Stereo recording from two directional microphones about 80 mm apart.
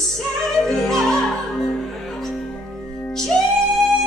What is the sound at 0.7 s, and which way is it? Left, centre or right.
Opera, centre.